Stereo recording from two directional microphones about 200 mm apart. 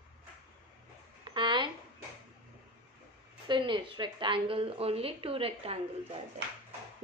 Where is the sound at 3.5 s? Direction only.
25° right (ahead or behind).